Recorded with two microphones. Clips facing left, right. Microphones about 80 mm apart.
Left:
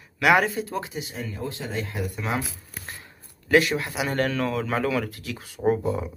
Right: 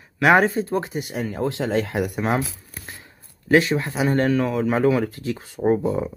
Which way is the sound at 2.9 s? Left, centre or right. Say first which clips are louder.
Even; right.